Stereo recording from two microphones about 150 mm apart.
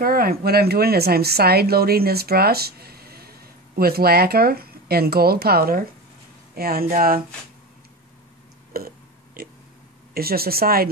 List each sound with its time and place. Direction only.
0.0 s speech: 80° right
8.7 s a sound: 85° right
10.1 s speech: 90° right